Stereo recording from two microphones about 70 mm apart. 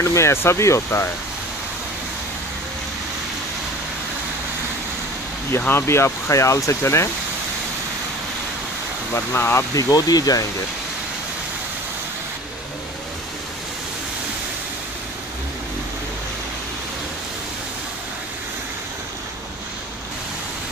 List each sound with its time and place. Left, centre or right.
0.0 s speech: left
5.7 s speech: left
9.1 s speech: left
9.8 s speech: left